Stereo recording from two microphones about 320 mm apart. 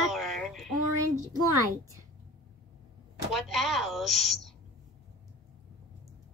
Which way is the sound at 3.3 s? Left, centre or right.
Centre.